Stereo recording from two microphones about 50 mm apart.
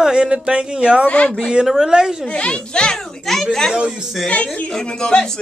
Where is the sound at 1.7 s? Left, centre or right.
Centre.